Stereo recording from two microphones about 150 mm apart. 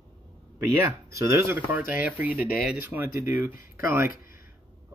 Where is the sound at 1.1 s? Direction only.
20° right (ahead or behind).